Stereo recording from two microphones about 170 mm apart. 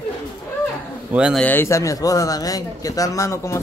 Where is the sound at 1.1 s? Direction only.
5° right (ahead or behind).